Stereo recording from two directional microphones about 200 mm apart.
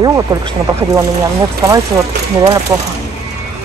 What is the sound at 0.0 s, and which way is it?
Speech, 15° right (ahead or behind).